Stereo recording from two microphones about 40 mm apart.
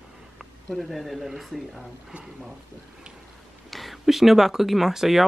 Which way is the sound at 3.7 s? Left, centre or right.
Centre.